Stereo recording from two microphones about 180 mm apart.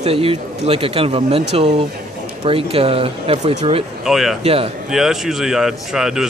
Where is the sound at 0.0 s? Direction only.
30° right (ahead or behind).